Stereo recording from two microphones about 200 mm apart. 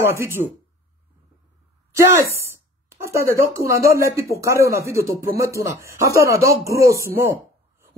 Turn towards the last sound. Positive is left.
turn(degrees=-15)  # may be behind; listen again after turning